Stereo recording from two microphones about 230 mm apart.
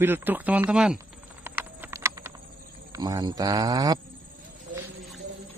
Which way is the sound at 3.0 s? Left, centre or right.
Centre.